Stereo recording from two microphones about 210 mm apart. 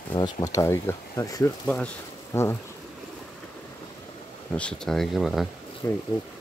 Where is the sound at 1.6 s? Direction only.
5° left (ahead or behind).